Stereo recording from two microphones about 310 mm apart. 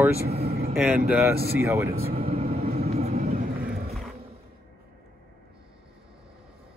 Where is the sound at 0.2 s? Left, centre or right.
Right.